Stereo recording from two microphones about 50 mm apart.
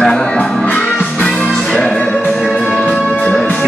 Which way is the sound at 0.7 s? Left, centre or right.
Left.